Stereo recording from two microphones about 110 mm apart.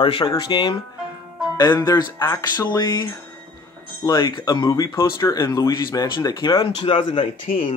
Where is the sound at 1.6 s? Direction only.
35° left (ahead or behind).